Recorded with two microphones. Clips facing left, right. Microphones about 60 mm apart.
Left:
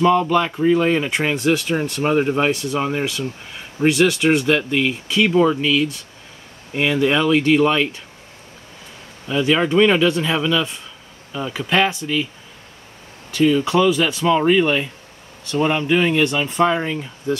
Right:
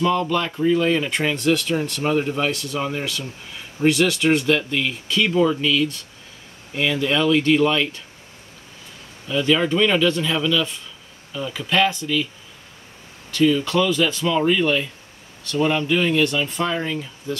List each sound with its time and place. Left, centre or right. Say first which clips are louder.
0.0 s speech: left 5 dB; left
1.3 s speech: left 1 dB; centre; by 2.5 s left
2.5 s speech: left 4 dB; centre
3.8 s speech: left 2 dB; centre
6.7 s speech: left 4 dB; left
9.3 s speech: left 2 dB; centre
13.3 s speech: left 2 dB; left